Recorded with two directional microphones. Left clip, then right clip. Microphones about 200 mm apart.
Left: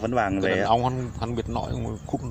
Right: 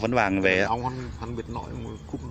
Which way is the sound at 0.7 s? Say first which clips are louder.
Left 6 dB; 50° left (ahead or behind).